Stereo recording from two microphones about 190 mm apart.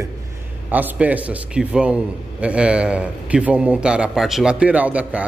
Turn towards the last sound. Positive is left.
turn(degrees=-5)  # may be behind; listen again after turning